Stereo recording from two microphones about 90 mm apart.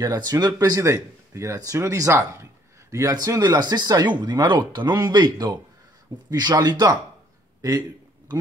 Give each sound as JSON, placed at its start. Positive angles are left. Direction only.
{"t": 0.0, "sound": "speech", "side_deg": -45}